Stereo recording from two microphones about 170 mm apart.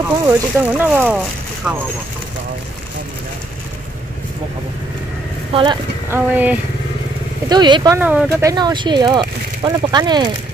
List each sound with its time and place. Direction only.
0.3 s speech: 10° right (ahead or behind)
5.5 s speech: 30° right (ahead or behind)
6.0 s speech: 10° right (ahead or behind)
7.4 s speech: 25° right (ahead or behind)
8.0 s speech: 10° right (ahead or behind)
8.5 s speech: 25° right (ahead or behind)